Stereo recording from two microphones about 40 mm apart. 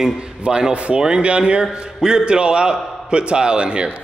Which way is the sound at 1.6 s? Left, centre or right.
Centre.